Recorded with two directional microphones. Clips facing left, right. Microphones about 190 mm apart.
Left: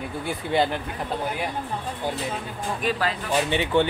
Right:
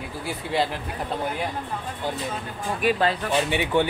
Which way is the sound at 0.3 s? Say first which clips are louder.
Left 2 dB; centre (ahead or behind).